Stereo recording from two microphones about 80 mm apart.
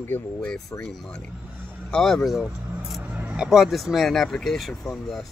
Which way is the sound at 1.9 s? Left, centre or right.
Centre.